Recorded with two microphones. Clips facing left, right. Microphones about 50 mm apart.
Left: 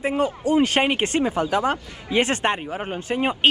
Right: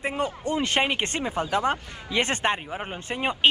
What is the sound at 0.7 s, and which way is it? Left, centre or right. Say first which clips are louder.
Speech: left 3 dB; left.